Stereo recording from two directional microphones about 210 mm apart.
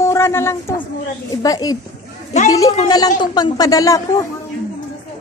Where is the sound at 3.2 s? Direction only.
20° left (ahead or behind).